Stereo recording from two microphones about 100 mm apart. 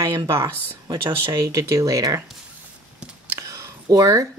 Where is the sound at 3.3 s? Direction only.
30° right (ahead or behind).